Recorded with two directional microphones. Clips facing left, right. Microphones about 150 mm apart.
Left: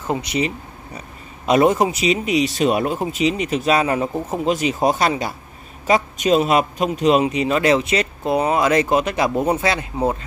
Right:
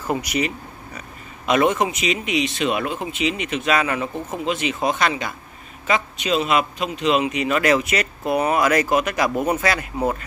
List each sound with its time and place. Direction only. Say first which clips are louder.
0.0 s a man's voice: left 1 dB; 25° left (ahead or behind)